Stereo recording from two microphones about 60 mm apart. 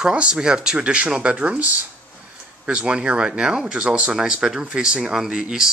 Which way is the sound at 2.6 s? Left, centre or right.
Centre.